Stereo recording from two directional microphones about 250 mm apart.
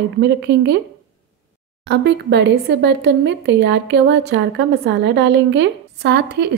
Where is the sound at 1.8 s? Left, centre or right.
Right.